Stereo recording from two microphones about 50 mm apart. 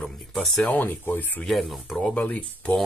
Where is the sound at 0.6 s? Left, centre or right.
Left.